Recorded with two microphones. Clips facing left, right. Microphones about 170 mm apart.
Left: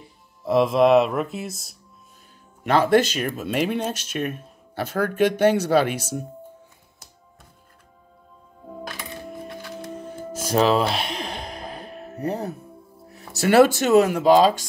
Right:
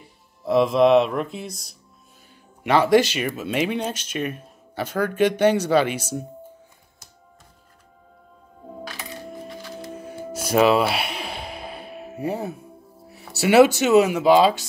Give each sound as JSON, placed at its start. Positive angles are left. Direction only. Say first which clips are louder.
{"t": 0.5, "sound": "speech", "louder": "even", "side_deg": 0}
{"t": 9.5, "sound": "music", "louder": "left 1 dB", "side_deg": 60}
{"t": 9.8, "sound": "music", "louder": "right 1 dB", "side_deg": -5}
{"t": 13.7, "sound": "speech", "louder": "even", "side_deg": -5}